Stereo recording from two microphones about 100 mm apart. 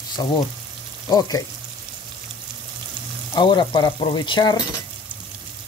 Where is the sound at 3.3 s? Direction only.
50° left (ahead or behind).